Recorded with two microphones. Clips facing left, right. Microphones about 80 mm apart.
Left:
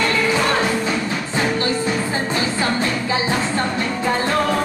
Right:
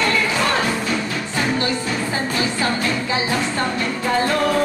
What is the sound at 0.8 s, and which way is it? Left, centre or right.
Music, left.